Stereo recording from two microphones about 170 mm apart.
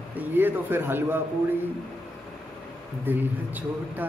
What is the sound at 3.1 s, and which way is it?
Speech, 10° right (ahead or behind).